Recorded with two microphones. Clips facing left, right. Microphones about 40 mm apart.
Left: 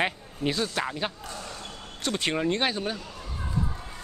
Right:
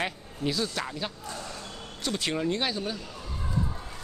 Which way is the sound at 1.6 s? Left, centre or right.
Left.